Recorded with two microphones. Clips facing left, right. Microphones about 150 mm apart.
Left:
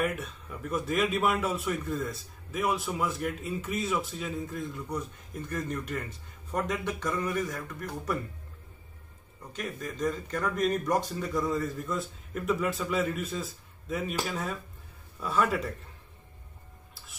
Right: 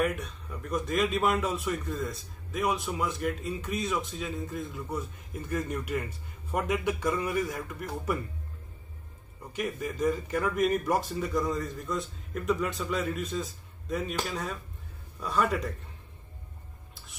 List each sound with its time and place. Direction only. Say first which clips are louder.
0.0 s a man's voice: right 2 dB; centre (ahead or behind)
9.5 s a man's voice: right 4 dB; 10° right (ahead or behind)